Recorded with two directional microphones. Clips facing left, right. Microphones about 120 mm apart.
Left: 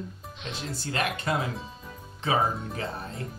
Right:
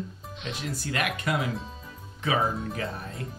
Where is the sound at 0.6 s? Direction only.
30° left (ahead or behind).